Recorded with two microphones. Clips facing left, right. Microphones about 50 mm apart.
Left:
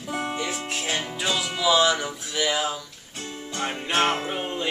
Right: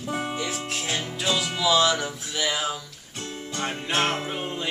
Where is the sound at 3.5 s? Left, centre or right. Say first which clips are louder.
Left 1 dB; left.